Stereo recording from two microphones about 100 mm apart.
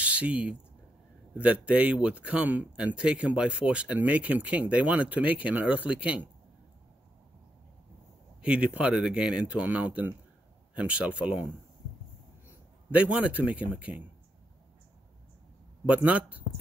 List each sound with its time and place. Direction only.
0.0 s speech: 10° right (ahead or behind)
8.4 s speech: 10° right (ahead or behind)
12.4 s a man's voice: 15° right (ahead or behind)
15.8 s speech: 15° right (ahead or behind)